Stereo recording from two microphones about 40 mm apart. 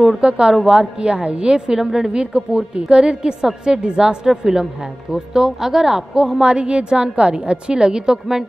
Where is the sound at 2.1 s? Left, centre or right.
Right.